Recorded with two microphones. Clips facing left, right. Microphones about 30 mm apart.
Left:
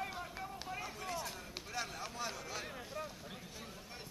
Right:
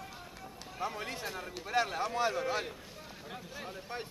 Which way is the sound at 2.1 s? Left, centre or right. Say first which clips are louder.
Right 12 dB; right.